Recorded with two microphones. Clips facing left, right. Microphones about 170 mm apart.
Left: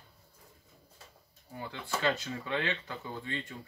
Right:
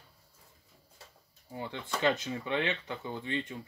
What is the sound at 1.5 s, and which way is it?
Speech, 20° right (ahead or behind).